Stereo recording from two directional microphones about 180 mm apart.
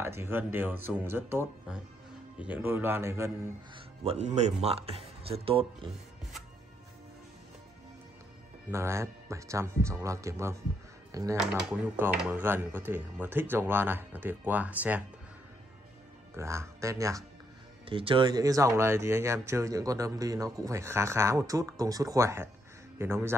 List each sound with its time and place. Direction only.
0.0 s speech: 15° right (ahead or behind)
3.7 s speech: 35° right (ahead or behind)
8.6 s speech: 15° right (ahead or behind)
11.3 s speech: 5° right (ahead or behind)
16.3 s speech: 15° right (ahead or behind)
17.8 s speech: 30° right (ahead or behind); by 23.3 s 15° right (ahead or behind)